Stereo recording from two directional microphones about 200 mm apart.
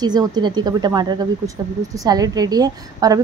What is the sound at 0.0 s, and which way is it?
A woman's voice, 20° right (ahead or behind).